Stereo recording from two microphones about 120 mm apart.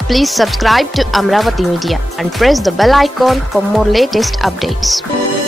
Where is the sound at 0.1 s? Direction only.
Centre (ahead or behind).